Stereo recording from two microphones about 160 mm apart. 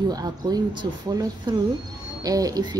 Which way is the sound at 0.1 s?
25° right (ahead or behind).